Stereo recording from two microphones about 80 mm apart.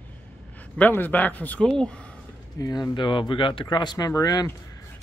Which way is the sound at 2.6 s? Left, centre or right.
Left.